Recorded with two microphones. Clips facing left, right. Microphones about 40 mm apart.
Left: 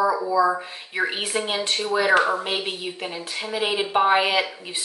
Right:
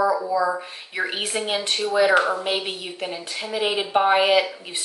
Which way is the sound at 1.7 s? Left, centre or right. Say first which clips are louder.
Right 3 dB; centre.